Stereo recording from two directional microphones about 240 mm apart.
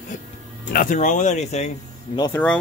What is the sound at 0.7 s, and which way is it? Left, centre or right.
Speech, left.